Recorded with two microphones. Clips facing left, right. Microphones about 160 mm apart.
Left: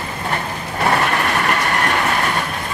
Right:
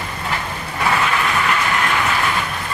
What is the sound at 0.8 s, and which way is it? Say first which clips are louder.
Vehicle: left 2 dB; 50° left (ahead or behind).